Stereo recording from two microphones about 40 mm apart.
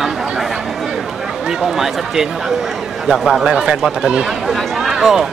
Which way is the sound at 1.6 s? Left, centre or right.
Centre.